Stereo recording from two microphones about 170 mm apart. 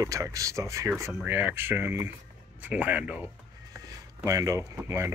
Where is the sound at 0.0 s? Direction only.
20° right (ahead or behind).